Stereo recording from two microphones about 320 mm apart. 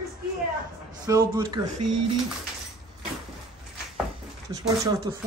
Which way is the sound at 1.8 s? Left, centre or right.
Right.